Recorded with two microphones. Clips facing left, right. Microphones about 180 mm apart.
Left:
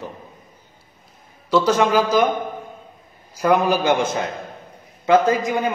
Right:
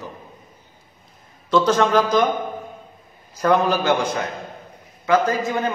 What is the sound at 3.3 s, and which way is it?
A man's voice, 10° left (ahead or behind).